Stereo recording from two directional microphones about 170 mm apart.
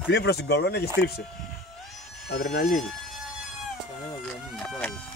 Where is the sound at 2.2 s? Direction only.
70° left (ahead or behind).